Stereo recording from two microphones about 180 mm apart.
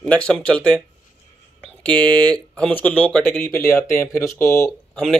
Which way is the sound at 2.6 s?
10° left (ahead or behind).